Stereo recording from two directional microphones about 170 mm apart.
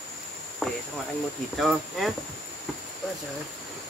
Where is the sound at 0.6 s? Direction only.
Centre (ahead or behind).